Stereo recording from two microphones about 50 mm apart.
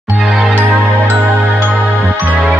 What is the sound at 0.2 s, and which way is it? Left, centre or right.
Music, centre.